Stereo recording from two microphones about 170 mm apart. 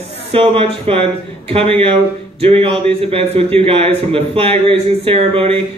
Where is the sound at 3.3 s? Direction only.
35° right (ahead or behind).